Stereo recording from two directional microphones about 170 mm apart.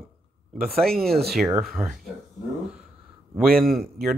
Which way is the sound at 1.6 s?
Centre (ahead or behind).